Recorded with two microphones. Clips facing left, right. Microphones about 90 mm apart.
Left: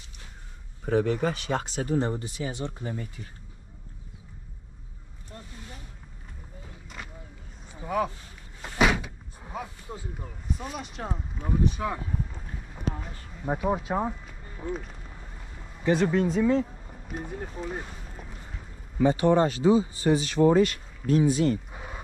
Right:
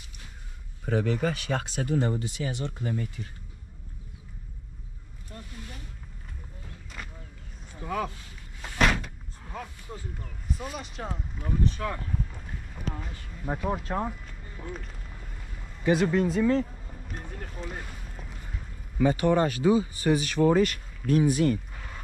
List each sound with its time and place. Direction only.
0.8 s speech: 25° left (ahead or behind)
6.6 s a sound: 5° left (ahead or behind)
7.7 s a sound: 15° left (ahead or behind)
8.6 s door: 5° left (ahead or behind)
9.4 s a sound: 15° left (ahead or behind)
10.5 s speech: centre (ahead or behind)
11.4 s speech: 15° left (ahead or behind)
15.8 s speech: 10° right (ahead or behind)
17.1 s speech: 15° left (ahead or behind)
18.9 s speech: 25° left (ahead or behind)